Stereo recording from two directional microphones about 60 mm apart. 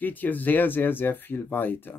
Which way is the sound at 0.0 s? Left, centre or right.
Left.